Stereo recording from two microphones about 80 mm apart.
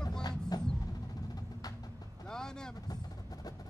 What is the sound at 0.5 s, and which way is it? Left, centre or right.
Music, left.